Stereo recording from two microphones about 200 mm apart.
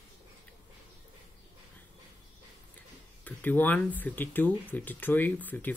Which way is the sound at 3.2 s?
10° left (ahead or behind).